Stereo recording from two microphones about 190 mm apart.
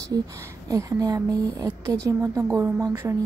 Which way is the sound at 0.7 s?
20° right (ahead or behind).